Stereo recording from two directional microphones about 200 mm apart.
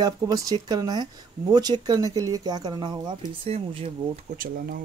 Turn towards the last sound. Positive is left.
turn(degrees=-30)  # may be behind; listen again after turning